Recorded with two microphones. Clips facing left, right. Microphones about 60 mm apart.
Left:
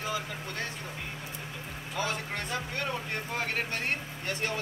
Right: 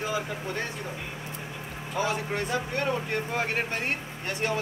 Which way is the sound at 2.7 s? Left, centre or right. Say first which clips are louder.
Right 5 dB; centre.